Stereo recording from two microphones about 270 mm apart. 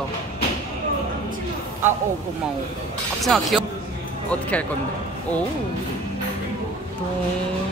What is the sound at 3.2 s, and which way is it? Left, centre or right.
Speech, centre.